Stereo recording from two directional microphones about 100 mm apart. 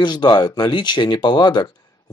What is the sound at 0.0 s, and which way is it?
Speech, 50° left (ahead or behind).